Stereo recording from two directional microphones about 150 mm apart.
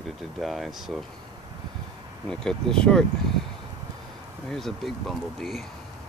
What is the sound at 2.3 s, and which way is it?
Speech, 5° left (ahead or behind).